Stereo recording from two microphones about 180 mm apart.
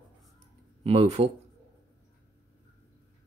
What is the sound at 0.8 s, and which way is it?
Speech, 30° right (ahead or behind).